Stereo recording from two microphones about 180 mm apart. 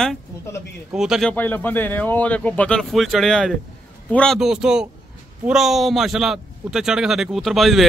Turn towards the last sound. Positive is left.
turn(degrees=0)  # may be behind; listen again after turning